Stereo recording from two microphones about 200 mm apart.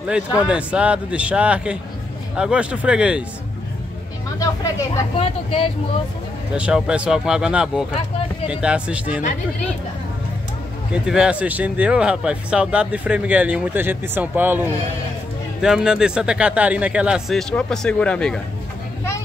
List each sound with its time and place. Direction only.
0.5 s speech: 5° right (ahead or behind)
4.4 s speech: 15° left (ahead or behind)
5.2 s speech: 30° left (ahead or behind)
6.5 s speech: 5° right (ahead or behind)
10.9 s speech: 5° right (ahead or behind)